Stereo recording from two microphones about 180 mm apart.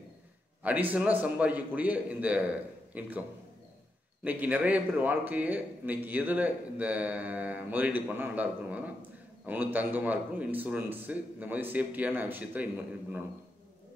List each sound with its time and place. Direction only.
0.7 s a man's voice: 10° right (ahead or behind)